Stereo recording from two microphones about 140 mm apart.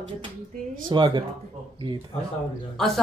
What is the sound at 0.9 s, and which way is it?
Speech, 30° right (ahead or behind).